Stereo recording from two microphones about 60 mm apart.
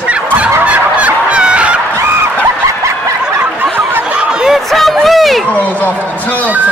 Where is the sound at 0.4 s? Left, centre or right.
Right.